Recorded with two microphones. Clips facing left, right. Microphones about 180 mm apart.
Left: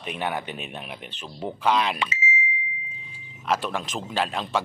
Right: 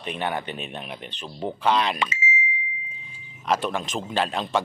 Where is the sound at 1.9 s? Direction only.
50° right (ahead or behind).